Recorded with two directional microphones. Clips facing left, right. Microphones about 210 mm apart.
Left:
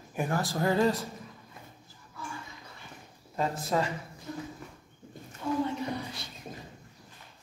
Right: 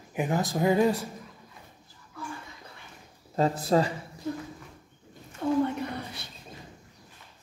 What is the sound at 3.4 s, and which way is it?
Speech, 35° right (ahead or behind).